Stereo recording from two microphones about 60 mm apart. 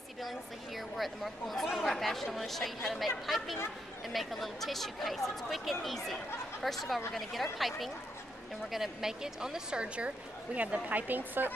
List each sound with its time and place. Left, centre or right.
0.2 s a woman's voice: centre; by 11.5 s right